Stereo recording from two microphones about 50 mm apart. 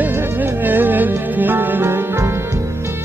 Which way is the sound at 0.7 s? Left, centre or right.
Right.